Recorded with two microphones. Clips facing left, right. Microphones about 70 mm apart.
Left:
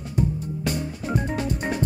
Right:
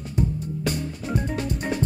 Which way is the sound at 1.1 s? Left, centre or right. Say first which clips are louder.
Left 1 dB; centre.